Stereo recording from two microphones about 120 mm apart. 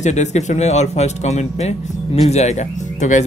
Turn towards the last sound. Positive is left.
turn(degrees=80)